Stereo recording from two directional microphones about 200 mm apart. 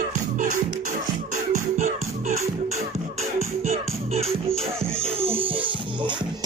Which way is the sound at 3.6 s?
30° right (ahead or behind).